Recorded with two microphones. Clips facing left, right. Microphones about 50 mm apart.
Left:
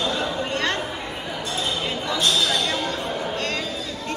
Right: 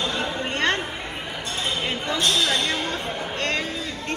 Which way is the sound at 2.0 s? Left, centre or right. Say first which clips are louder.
Even; right.